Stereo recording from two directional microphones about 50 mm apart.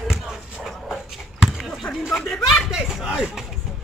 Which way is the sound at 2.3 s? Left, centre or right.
Centre.